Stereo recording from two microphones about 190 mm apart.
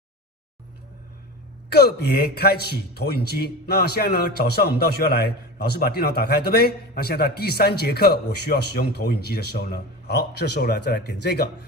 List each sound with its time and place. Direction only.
1.7 s a man's voice: 60° left (ahead or behind)